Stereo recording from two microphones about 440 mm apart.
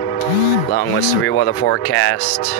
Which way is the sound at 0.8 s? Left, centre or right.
Left.